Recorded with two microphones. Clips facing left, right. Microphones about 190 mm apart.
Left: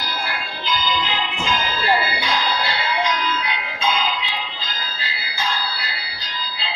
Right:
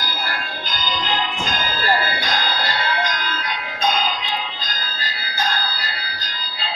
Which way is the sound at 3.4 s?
40° right (ahead or behind).